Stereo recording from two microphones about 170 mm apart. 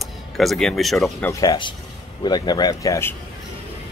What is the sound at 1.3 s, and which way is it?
Speech, 20° left (ahead or behind).